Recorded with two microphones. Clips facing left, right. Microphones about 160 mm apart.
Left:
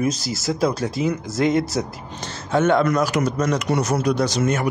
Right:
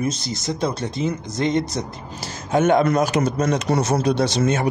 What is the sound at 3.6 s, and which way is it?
Speech, 35° right (ahead or behind).